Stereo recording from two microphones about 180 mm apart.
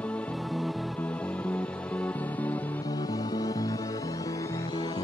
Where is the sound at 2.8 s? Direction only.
20° left (ahead or behind).